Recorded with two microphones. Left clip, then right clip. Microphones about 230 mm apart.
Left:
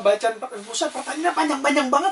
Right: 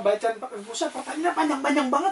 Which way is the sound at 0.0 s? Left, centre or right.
Right.